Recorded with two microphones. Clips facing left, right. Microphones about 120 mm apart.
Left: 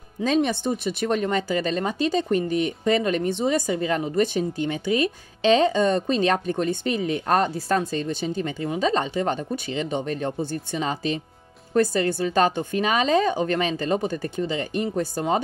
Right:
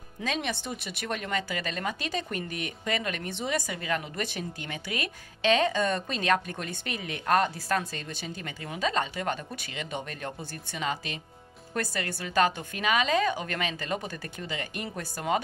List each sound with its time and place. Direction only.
0.2 s a woman's voice: 35° left (ahead or behind)